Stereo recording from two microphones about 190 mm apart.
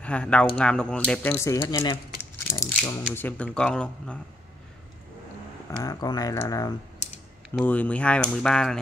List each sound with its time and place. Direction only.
0.0 s speech: 5° left (ahead or behind)
5.9 s speech: 20° left (ahead or behind); by 8.7 s 5° left (ahead or behind)